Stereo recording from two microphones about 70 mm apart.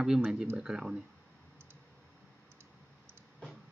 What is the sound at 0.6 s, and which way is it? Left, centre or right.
Speech, centre.